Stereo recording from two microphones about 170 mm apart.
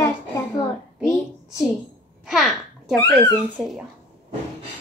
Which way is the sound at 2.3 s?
Centre (ahead or behind).